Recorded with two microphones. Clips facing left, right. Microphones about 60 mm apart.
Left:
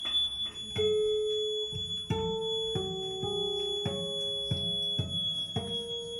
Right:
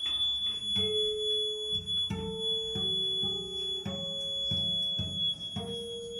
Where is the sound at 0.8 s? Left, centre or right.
Left.